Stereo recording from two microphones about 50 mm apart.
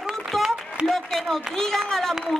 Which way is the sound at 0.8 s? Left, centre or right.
Centre.